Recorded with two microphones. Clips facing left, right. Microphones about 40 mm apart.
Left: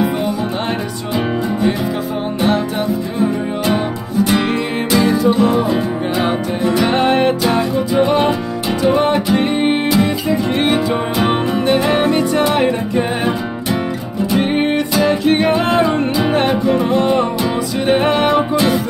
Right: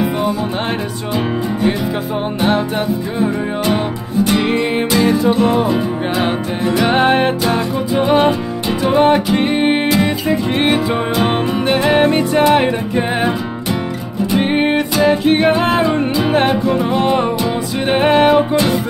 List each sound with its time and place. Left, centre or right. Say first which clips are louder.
6.8 s music: right 2 dB; centre
7.4 s music: left 1 dB; centre
8.9 s music: right 6 dB; centre
11.7 s music: right 2 dB; centre
14.5 s music: right 1 dB; centre
18.1 s music: right 3 dB; centre